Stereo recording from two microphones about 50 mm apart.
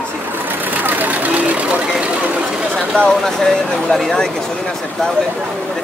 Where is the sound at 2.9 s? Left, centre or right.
Centre.